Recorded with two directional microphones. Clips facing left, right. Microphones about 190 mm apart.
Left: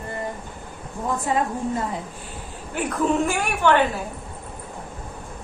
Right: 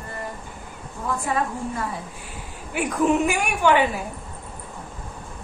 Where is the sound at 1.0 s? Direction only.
20° left (ahead or behind).